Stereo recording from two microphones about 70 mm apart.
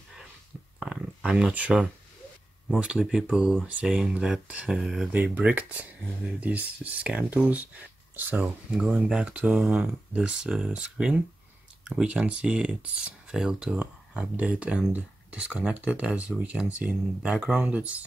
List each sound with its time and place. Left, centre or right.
0.7 s a sound: centre
2.8 s speech: centre
5.4 s speech: right
8.7 s speech: centre